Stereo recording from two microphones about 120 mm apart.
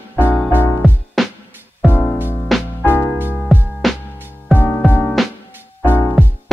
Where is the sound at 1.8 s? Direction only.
15° left (ahead or behind).